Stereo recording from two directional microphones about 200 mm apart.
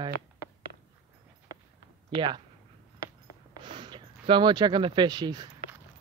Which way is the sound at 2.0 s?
25° right (ahead or behind).